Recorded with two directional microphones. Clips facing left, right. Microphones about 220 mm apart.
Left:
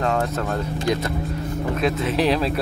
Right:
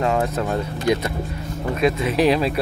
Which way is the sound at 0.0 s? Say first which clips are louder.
Right 2 dB; 5° right (ahead or behind).